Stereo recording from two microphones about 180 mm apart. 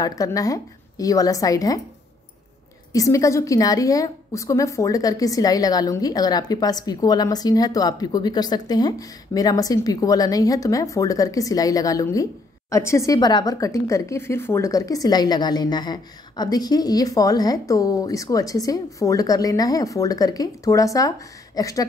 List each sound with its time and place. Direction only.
0.0 s a woman's voice: 20° left (ahead or behind)
2.9 s a woman's voice: 20° left (ahead or behind)